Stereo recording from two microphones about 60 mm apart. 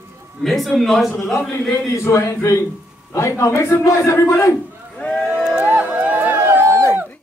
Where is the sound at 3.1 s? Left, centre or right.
Left.